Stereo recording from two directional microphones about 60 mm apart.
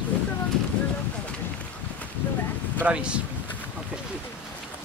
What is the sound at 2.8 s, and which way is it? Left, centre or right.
Speech, right.